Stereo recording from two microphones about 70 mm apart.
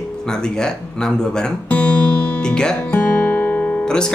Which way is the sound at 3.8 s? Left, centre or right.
Centre.